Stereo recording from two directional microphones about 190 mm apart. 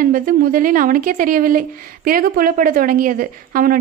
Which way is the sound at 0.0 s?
45° right (ahead or behind).